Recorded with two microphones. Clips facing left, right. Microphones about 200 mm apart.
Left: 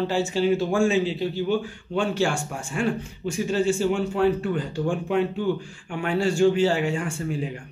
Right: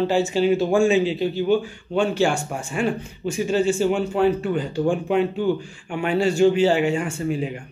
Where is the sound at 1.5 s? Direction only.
Centre (ahead or behind).